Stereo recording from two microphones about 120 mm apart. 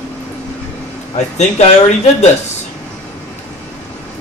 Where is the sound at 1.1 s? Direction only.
70° left (ahead or behind).